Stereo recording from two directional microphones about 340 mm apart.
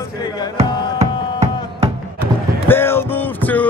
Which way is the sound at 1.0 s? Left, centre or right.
Centre.